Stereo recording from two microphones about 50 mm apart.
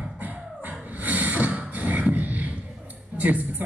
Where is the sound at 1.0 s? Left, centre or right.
Right.